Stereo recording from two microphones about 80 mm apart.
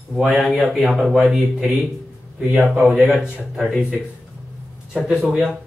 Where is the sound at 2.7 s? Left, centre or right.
Centre.